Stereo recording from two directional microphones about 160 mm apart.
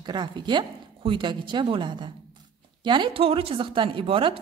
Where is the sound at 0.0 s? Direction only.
30° right (ahead or behind).